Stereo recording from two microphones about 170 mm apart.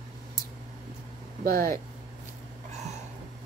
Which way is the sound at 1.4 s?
60° right (ahead or behind).